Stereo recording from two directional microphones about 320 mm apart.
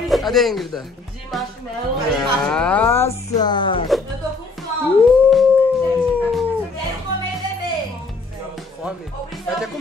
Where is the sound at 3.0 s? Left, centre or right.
Centre.